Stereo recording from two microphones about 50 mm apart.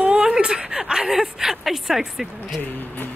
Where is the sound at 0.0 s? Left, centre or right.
Centre.